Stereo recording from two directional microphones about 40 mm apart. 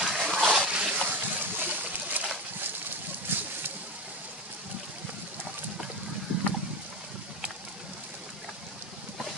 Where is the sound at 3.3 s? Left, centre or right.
Right.